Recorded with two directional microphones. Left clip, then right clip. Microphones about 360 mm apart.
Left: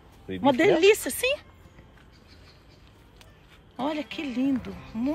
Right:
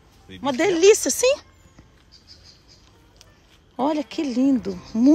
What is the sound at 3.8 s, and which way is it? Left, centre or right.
Speech, centre.